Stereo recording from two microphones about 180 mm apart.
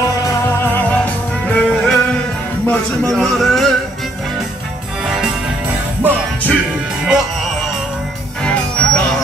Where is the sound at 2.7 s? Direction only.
5° left (ahead or behind).